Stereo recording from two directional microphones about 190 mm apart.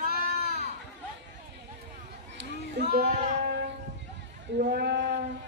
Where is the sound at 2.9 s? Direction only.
40° right (ahead or behind).